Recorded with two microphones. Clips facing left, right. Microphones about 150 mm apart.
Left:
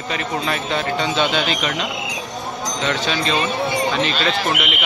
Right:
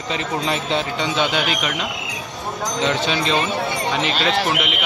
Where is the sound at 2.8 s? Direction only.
20° right (ahead or behind).